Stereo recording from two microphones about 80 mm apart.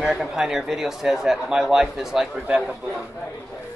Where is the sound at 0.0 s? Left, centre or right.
Centre.